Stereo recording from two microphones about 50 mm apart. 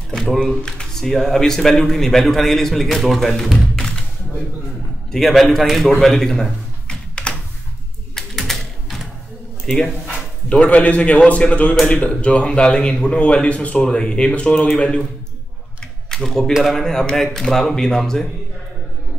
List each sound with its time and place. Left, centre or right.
0.4 s speech: centre
3.4 s music: centre
5.3 s a man's voice: centre
7.3 s a sound: centre
8.4 s typing: centre
9.7 s a man's voice: centre
10.5 s a man's voice: left
16.1 s speech: centre